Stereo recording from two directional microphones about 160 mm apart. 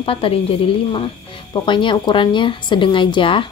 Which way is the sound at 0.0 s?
35° left (ahead or behind).